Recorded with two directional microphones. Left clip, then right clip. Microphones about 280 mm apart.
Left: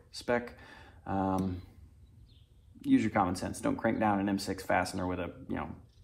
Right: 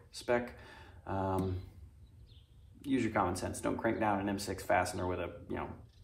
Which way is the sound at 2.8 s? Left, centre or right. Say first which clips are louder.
Left 4 dB; left.